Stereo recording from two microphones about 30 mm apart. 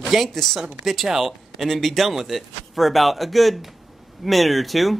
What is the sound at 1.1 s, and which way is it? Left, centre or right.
Speech, centre.